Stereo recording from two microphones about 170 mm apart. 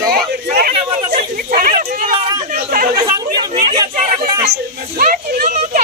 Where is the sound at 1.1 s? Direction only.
60° right (ahead or behind).